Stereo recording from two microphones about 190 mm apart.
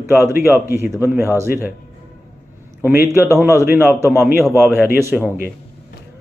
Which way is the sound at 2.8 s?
10° right (ahead or behind).